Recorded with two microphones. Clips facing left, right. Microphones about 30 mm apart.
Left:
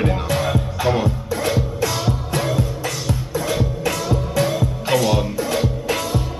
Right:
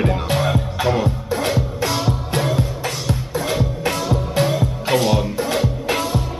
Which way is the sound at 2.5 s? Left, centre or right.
Right.